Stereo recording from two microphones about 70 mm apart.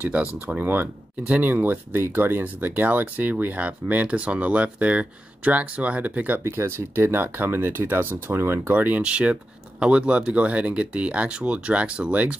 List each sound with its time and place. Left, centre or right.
0.0 s speech: right
6.4 s speech: right; by 12.4 s centre